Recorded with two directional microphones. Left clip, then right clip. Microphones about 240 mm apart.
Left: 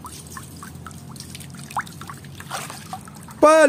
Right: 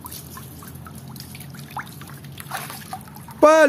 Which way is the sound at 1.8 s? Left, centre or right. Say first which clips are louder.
Left 5 dB; left.